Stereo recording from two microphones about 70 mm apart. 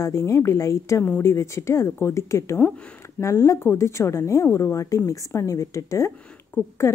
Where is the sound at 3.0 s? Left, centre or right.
Left.